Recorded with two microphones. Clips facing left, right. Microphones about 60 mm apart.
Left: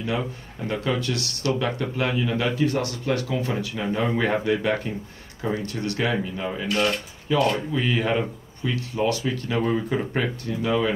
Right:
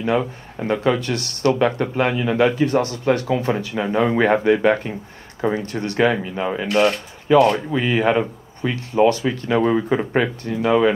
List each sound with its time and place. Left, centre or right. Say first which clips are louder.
0.0 s speech: right 7 dB; right
5.4 s speech: right 5 dB; right